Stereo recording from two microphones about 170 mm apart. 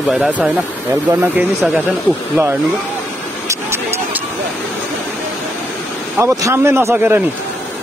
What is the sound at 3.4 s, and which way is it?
Vehicle, 15° right (ahead or behind).